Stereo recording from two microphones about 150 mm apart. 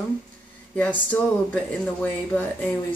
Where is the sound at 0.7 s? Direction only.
10° left (ahead or behind).